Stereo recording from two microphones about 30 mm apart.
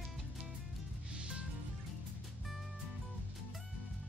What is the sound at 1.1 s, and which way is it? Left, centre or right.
Music, right.